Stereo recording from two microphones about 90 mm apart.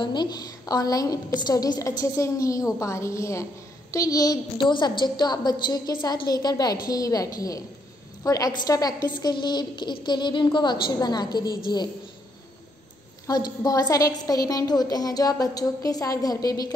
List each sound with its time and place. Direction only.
0.0 s a woman's voice: 55° left (ahead or behind)
4.6 s a woman's voice: 60° left (ahead or behind)
13.3 s a woman's voice: 45° left (ahead or behind)